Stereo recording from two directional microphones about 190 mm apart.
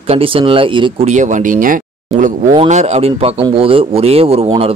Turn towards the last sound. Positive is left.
turn(degrees=-30)  # may be behind; listen again after turning